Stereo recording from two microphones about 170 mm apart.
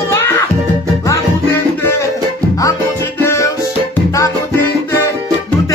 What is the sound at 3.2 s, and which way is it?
Music, 15° left (ahead or behind).